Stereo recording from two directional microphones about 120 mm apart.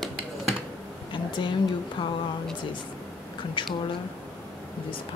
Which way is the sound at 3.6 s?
45° left (ahead or behind).